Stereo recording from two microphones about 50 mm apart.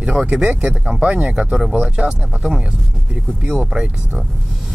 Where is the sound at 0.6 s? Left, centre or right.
Right.